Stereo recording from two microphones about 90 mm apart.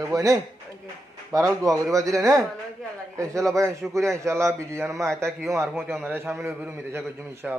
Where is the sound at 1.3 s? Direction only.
40° right (ahead or behind).